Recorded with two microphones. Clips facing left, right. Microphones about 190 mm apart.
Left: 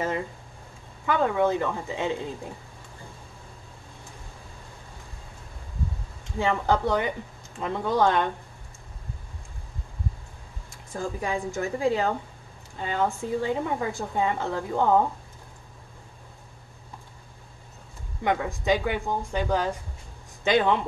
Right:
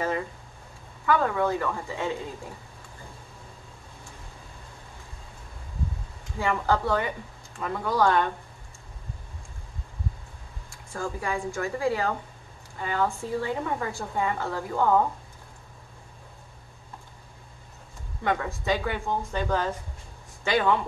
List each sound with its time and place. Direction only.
1.0 s speech: 20° left (ahead or behind)
6.4 s speech: 20° left (ahead or behind)
10.9 s speech: 20° left (ahead or behind)
18.2 s speech: 15° left (ahead or behind)